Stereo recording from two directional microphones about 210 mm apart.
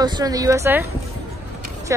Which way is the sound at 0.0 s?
20° right (ahead or behind).